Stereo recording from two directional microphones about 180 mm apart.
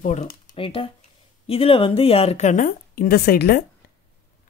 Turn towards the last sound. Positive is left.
turn(degrees=60)  # may be behind; listen again after turning